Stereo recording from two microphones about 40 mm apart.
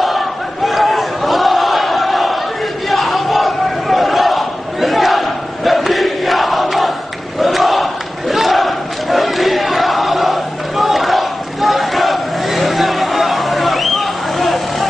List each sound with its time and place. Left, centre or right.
0.7 s battle cry: centre